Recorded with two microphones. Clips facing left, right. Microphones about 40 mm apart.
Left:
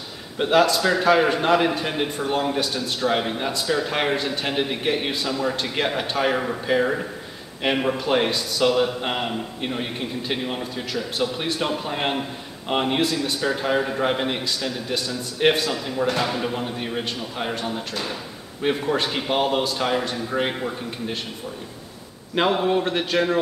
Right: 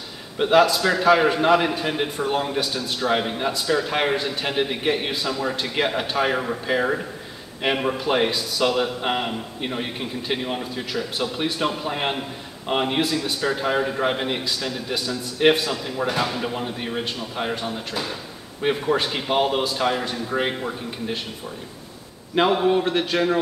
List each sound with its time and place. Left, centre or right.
0.4 s speech: centre
22.3 s speech: centre